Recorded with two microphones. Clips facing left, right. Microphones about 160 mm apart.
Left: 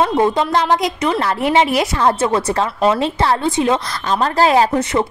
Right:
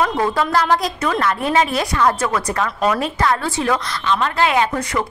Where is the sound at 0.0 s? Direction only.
25° left (ahead or behind).